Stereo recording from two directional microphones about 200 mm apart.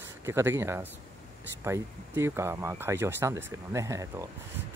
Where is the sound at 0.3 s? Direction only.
10° right (ahead or behind).